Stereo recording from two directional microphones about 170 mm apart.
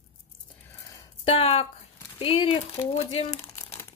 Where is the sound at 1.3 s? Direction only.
35° left (ahead or behind).